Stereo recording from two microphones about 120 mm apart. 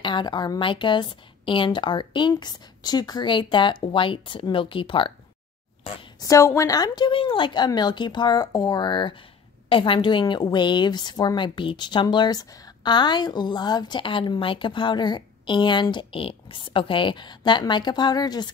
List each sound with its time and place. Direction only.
0.0 s a woman's voice: 40° left (ahead or behind)
6.2 s a woman's voice: 25° left (ahead or behind)
7.1 s a woman's voice: 45° left (ahead or behind)